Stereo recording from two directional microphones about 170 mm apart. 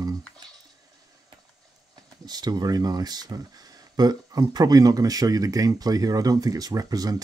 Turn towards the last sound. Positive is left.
turn(degrees=-20)  # may be behind; listen again after turning